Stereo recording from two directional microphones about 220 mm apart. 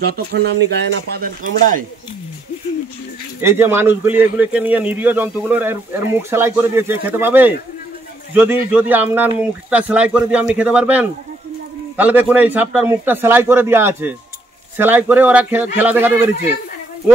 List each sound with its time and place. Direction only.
0.1 s speech: 45° right (ahead or behind)
3.3 s a man's voice: 10° right (ahead or behind)